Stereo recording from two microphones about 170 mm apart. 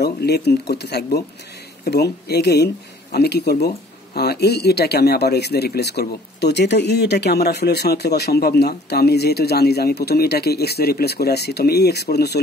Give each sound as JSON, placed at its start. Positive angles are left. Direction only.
{"t": 0.0, "sound": "speech", "side_deg": 75}